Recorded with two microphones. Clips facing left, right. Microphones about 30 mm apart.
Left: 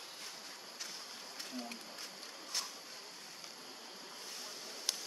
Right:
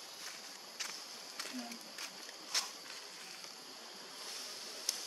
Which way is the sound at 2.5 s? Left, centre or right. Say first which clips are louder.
Right 3 dB; right.